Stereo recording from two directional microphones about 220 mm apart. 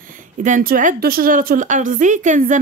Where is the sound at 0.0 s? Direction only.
40° right (ahead or behind).